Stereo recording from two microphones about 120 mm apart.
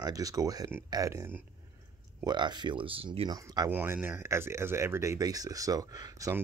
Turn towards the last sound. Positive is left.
turn(degrees=-30)  # may be behind; listen again after turning